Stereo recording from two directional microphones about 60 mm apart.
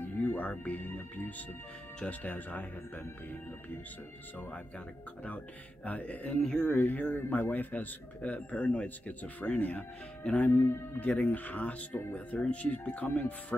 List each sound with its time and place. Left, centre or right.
0.0 s speech: left
4.4 s speech: left
6.7 s speech: left
10.5 s speech: left
11.0 s speech: left